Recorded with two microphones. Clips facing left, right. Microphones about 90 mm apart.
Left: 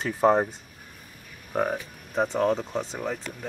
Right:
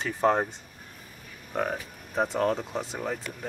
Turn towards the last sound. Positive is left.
turn(degrees=0)  # may be behind; listen again after turning